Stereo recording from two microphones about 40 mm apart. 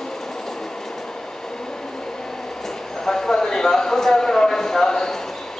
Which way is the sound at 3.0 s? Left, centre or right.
Centre.